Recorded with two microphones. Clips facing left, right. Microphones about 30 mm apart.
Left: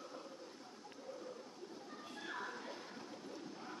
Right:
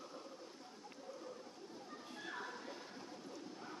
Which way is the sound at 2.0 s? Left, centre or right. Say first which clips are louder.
Left 2 dB; centre.